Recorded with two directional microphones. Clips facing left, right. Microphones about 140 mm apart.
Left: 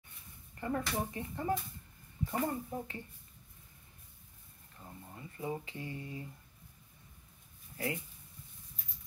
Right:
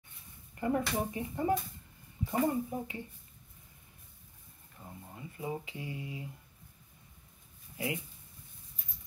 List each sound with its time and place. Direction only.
0.6 s speech: 15° right (ahead or behind)
4.7 s speech: 10° right (ahead or behind)
7.7 s speech: 15° right (ahead or behind)